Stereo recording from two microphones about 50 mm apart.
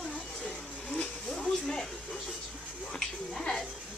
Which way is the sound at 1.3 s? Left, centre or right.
Centre.